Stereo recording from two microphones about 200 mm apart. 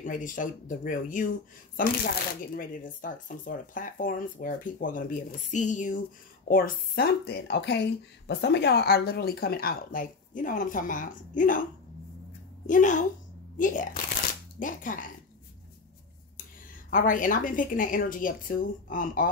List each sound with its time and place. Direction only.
0.0 s speech: 40° left (ahead or behind)
12.6 s speech: 40° left (ahead or behind)
16.9 s speech: 40° left (ahead or behind)